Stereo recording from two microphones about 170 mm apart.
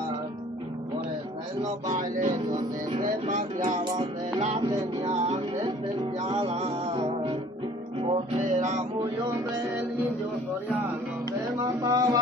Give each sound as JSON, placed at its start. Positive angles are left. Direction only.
{"t": 1.6, "sound": "music", "side_deg": -45}
{"t": 4.4, "sound": "music", "side_deg": -35}
{"t": 6.2, "sound": "music", "side_deg": -35}
{"t": 11.5, "sound": "speech", "side_deg": -20}